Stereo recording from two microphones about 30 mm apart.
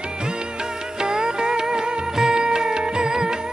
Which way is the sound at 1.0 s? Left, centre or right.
Right.